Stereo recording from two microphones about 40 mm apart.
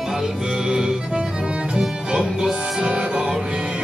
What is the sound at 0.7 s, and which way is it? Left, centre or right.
Music, centre.